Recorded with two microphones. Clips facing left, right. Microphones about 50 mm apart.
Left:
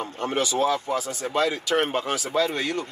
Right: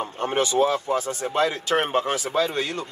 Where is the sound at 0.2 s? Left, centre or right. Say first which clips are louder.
Right 3 dB; right.